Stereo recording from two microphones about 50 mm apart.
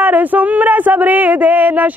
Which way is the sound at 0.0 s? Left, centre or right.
Right.